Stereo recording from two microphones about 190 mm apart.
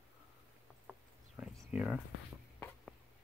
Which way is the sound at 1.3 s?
5° right (ahead or behind).